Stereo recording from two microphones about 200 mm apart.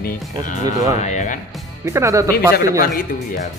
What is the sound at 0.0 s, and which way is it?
Speech, 45° left (ahead or behind).